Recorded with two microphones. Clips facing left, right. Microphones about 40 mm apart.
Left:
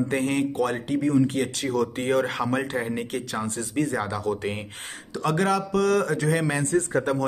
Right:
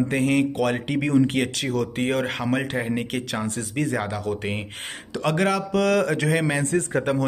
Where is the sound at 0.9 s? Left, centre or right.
Right.